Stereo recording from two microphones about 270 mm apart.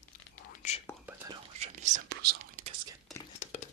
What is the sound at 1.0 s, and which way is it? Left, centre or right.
Whispering, centre.